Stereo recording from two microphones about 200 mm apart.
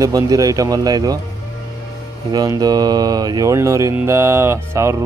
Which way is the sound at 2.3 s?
20° right (ahead or behind).